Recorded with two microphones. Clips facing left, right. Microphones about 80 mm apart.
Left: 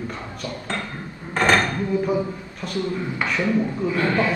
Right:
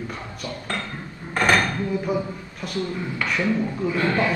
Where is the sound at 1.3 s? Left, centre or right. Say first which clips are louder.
Left 1 dB; left.